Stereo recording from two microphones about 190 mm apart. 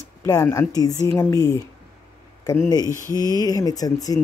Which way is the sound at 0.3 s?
15° left (ahead or behind).